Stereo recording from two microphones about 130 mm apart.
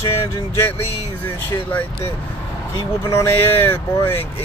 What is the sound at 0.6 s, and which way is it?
Speech, 20° left (ahead or behind).